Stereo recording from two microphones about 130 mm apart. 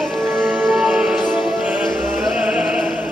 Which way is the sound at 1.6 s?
10° right (ahead or behind).